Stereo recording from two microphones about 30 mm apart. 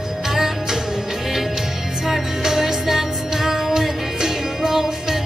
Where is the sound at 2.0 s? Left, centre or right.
Centre.